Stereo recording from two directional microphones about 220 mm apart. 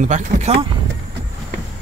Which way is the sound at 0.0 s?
35° right (ahead or behind).